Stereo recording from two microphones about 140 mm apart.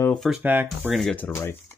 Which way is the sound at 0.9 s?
5° left (ahead or behind).